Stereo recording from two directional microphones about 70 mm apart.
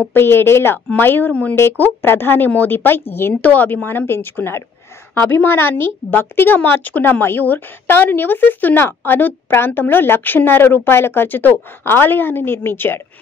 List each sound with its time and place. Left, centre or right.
0.1 s a woman's voice: left
1.6 s a woman's voice: left